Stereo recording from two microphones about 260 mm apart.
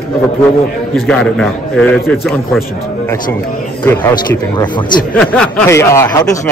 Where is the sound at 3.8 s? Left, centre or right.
Centre.